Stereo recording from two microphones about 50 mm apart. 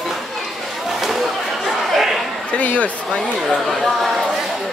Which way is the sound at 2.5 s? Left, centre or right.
Left.